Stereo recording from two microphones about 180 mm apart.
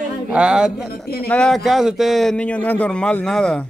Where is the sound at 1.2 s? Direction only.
5° left (ahead or behind).